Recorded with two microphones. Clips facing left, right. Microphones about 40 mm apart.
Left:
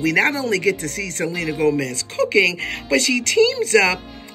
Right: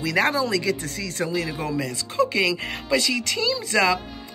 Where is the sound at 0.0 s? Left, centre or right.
Left.